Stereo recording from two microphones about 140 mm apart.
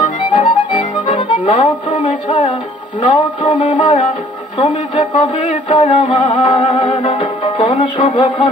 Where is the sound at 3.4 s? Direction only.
45° left (ahead or behind).